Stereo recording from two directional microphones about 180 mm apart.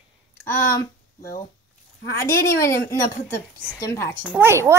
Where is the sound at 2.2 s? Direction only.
15° left (ahead or behind).